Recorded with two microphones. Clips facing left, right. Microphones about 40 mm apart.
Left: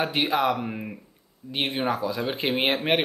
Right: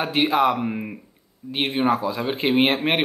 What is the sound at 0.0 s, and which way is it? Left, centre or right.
Speech, centre.